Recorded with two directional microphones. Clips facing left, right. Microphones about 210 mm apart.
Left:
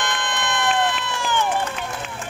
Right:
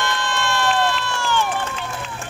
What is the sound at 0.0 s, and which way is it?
Run, 20° left (ahead or behind).